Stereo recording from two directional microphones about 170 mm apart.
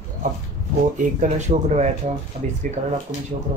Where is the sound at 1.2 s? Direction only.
45° right (ahead or behind).